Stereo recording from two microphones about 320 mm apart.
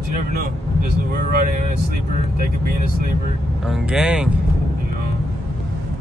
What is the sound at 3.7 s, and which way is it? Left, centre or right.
Speech, centre.